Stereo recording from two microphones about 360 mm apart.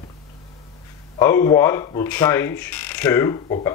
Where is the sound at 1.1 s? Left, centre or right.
Centre.